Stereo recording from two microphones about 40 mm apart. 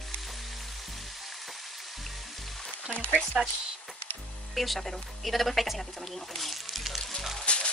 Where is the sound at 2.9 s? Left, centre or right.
Left.